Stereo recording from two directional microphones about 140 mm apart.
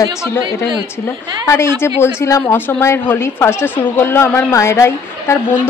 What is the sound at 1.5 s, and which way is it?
A woman's voice, 20° left (ahead or behind).